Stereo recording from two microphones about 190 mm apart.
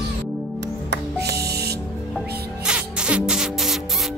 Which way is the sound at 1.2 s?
55° right (ahead or behind).